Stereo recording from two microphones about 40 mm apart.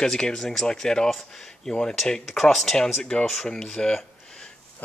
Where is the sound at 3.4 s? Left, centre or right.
Centre.